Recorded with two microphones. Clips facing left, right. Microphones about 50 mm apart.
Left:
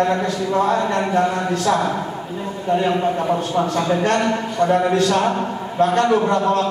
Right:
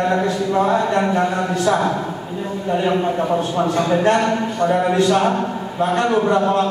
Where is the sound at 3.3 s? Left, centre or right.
Centre.